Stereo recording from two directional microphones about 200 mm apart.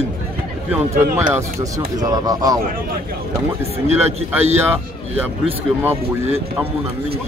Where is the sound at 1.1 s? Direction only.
10° right (ahead or behind).